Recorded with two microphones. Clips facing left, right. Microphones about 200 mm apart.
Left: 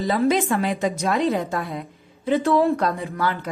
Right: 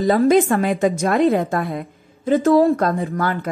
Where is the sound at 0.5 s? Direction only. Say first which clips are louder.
Right 5 dB; 50° right (ahead or behind).